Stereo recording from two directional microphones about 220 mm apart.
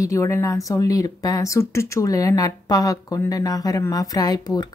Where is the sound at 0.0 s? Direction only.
15° left (ahead or behind).